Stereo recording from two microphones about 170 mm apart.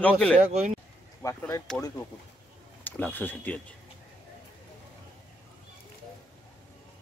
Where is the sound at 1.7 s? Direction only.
5° left (ahead or behind).